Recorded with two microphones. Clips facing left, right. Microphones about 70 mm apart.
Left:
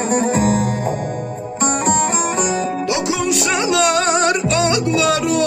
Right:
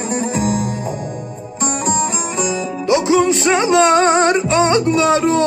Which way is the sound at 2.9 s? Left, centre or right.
Right.